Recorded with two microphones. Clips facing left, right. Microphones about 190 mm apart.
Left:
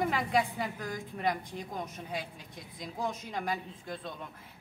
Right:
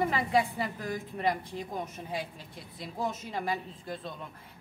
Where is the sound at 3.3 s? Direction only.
5° right (ahead or behind).